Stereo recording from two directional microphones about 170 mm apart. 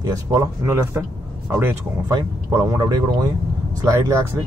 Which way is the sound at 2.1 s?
20° right (ahead or behind).